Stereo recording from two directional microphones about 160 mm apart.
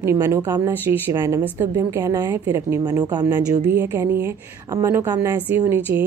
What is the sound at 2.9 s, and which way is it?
Speech, 25° right (ahead or behind).